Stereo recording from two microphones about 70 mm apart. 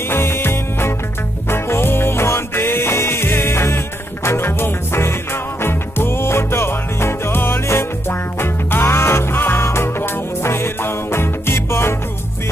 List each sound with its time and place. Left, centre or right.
0.1 s music: left